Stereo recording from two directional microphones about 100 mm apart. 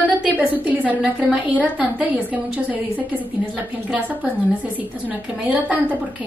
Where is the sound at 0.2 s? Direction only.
15° right (ahead or behind).